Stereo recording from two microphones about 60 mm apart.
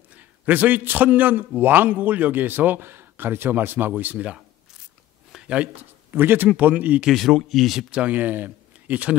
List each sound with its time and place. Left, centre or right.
0.1 s a man's voice: right
5.3 s a sound: centre
6.1 s speech: right
7.1 s speech: centre
7.9 s speech: right